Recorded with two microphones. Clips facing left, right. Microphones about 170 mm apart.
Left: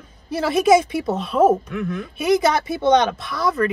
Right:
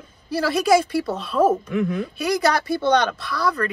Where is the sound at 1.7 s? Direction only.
25° right (ahead or behind).